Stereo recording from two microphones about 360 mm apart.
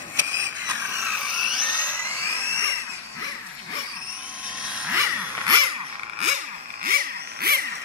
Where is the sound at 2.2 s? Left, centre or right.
Centre.